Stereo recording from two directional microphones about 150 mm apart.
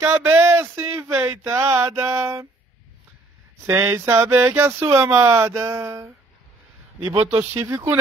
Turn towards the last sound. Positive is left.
turn(degrees=-20)  # may be behind; listen again after turning